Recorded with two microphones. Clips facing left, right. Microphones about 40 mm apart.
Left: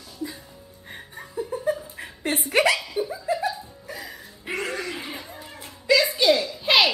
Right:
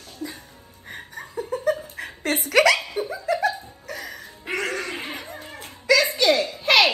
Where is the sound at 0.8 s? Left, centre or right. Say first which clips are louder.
Right 3 dB; right.